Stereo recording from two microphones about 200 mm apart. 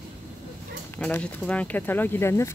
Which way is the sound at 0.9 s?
5° left (ahead or behind).